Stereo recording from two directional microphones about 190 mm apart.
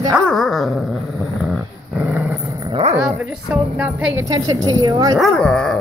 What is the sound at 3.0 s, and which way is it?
A woman's voice, 5° right (ahead or behind).